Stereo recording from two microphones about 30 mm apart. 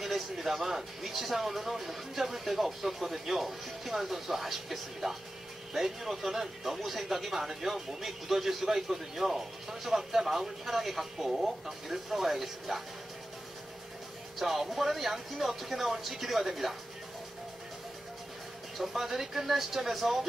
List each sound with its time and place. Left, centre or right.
0.0 s speech: centre
14.4 s speech: centre
18.8 s speech: centre